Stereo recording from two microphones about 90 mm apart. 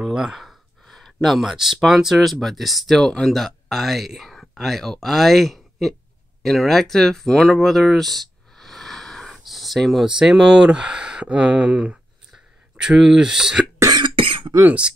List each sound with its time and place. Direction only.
0.0 s speech: 5° right (ahead or behind)
13.8 s cough: 60° right (ahead or behind)
14.6 s speech: 15° right (ahead or behind)